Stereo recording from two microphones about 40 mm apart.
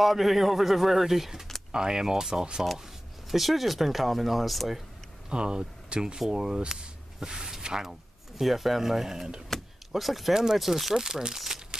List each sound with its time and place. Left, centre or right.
0.0 s speech: centre
1.7 s speech: centre
3.3 s speech: centre
5.3 s speech: right
6.7 s a sound: centre
8.4 s speech: centre
9.5 s door: centre
10.3 s speech: centre